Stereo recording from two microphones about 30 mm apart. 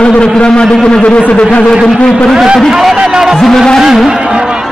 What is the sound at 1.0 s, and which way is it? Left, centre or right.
Speech, left.